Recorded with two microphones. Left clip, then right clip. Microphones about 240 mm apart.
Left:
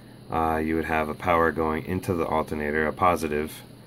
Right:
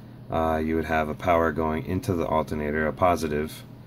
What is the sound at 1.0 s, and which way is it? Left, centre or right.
Speech, left.